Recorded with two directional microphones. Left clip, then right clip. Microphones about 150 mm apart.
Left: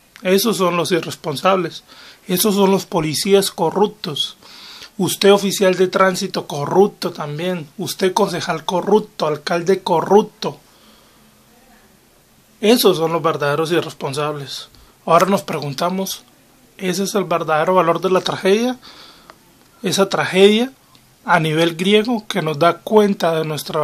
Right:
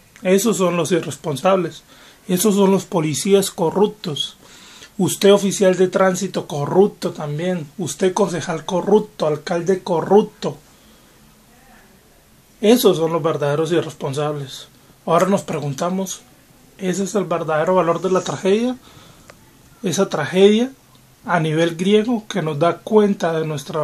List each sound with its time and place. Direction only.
0.1 s speech: 5° left (ahead or behind)
9.7 s speech: 20° left (ahead or behind)
12.5 s speech: 5° left (ahead or behind)